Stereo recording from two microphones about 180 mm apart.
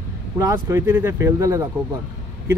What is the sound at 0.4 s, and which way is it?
Speech, 15° right (ahead or behind).